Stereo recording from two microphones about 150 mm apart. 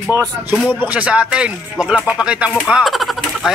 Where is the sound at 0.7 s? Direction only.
10° right (ahead or behind).